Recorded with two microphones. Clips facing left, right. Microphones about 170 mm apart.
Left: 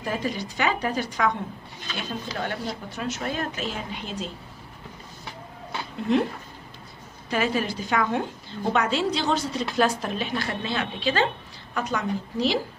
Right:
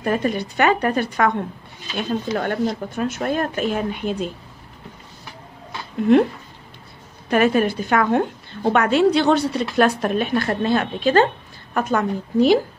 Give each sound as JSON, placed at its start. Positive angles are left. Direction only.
{"t": 0.0, "sound": "a woman's voice", "side_deg": -60}
{"t": 2.3, "sound": "speech", "side_deg": -50}
{"t": 6.1, "sound": "a woman's voice", "side_deg": -60}